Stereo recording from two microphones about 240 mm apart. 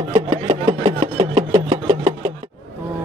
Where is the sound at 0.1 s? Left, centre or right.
Right.